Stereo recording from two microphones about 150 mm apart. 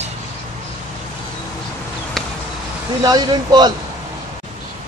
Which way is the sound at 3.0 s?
25° right (ahead or behind).